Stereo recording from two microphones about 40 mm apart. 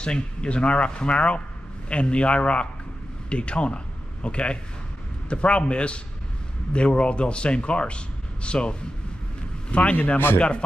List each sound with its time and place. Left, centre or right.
0.0 s a man's voice: left